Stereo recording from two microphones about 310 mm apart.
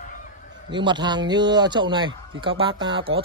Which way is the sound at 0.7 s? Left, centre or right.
Centre.